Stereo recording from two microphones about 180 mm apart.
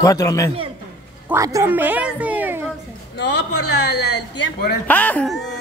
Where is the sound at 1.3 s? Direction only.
15° right (ahead or behind).